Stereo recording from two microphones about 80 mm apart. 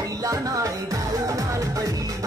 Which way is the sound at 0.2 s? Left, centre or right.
Right.